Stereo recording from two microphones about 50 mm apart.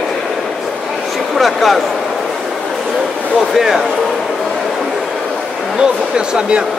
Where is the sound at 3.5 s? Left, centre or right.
Centre.